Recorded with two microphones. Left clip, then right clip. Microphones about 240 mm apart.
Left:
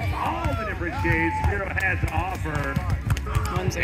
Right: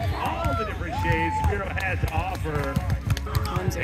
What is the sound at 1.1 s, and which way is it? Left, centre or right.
Speech, right.